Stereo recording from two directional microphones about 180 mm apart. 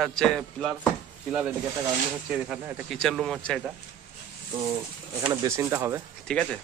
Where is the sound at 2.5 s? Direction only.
Centre (ahead or behind).